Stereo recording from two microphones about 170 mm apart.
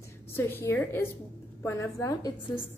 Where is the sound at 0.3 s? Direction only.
15° left (ahead or behind).